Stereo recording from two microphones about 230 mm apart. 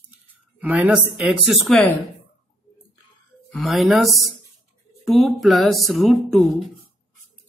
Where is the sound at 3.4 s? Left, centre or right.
Centre.